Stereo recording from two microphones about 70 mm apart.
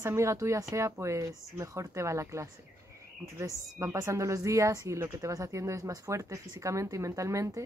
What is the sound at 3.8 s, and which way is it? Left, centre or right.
Speech, right.